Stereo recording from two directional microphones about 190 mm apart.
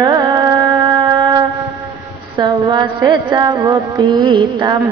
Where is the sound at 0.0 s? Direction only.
20° right (ahead or behind).